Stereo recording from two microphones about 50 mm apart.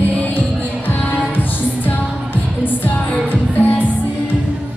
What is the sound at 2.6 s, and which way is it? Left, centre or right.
Music, left.